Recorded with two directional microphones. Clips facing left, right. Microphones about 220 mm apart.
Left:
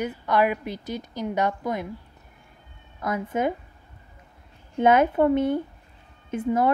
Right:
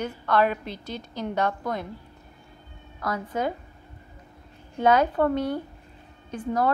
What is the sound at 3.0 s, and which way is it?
Speech, 25° left (ahead or behind).